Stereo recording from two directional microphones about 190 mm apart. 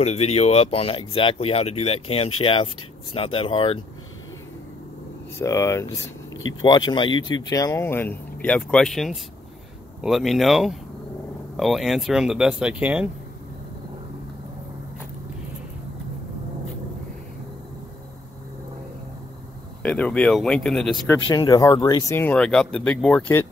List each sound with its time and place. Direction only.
0.0 s speech: 35° left (ahead or behind)
5.4 s speech: 15° left (ahead or behind); by 13.1 s 5° right (ahead or behind)
19.8 s speech: 5° left (ahead or behind)
21.4 s speech: 20° left (ahead or behind)